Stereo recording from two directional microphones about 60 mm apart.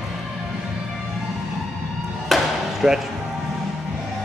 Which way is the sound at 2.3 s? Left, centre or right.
Centre.